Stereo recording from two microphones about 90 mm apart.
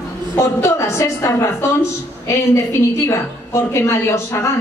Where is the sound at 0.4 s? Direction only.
30° left (ahead or behind).